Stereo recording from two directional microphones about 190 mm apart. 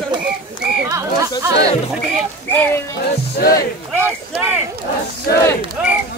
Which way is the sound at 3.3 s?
55° left (ahead or behind).